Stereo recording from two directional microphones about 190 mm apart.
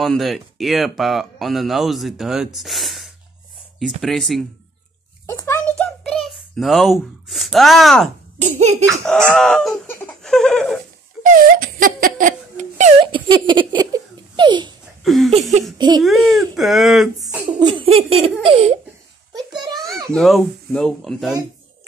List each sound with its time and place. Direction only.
0.0 s speech: centre (ahead or behind)
5.2 s a sound: 15° left (ahead or behind)
8.4 s a child's voice: 35° right (ahead or behind)
9.0 s laughter: 5° left (ahead or behind)
11.3 s giggle: 45° right (ahead or behind)
13.0 s giggle: 25° right (ahead or behind)
15.0 s a sound: centre (ahead or behind)
16.0 s speech: centre (ahead or behind)
17.5 s speech: 25° right (ahead or behind)
19.3 s a sound: 20° right (ahead or behind)
20.2 s speech: centre (ahead or behind)